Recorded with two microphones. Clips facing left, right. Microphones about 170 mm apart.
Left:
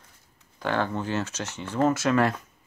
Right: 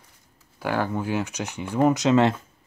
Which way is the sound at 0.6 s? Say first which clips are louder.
Right 1 dB; 10° right (ahead or behind).